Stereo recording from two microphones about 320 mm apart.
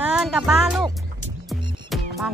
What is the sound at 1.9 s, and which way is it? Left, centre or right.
Music, centre.